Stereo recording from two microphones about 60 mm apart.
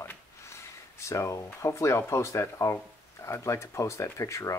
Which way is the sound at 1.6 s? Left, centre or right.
Left.